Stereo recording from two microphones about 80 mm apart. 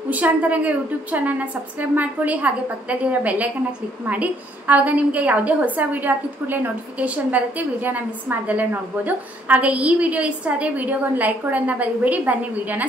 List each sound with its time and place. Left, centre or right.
0.1 s a woman's voice: centre